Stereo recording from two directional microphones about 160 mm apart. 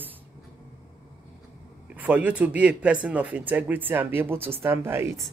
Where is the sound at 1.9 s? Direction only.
10° right (ahead or behind).